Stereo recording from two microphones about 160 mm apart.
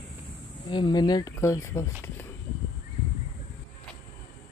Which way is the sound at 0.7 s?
30° left (ahead or behind).